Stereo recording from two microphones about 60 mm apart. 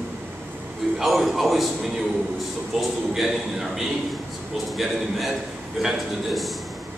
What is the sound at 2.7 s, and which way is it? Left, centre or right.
A man's voice, centre.